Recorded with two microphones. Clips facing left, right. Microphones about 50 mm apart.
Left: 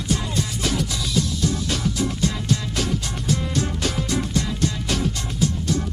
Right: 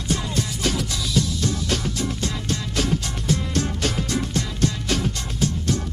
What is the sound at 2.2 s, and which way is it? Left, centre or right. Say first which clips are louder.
Music: left 3 dB; right.